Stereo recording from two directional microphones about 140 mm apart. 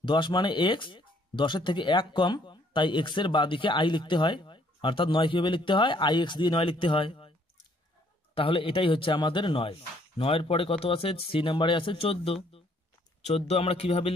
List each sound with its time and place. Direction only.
0.0 s speech: 35° left (ahead or behind)
8.4 s a man's voice: 40° left (ahead or behind)